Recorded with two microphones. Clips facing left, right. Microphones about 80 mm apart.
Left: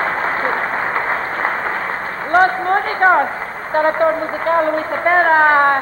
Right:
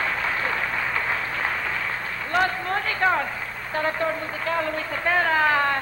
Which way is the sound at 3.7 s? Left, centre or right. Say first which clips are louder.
Left 10 dB; left.